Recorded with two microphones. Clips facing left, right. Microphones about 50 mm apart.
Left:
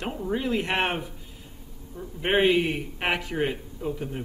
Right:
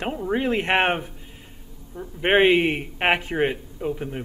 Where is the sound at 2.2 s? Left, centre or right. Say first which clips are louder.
Right 4 dB; right.